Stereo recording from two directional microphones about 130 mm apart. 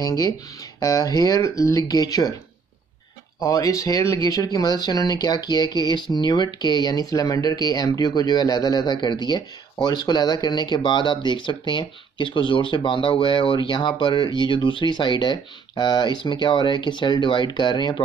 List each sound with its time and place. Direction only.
0.0 s speech: 25° left (ahead or behind)
3.3 s speech: 25° left (ahead or behind)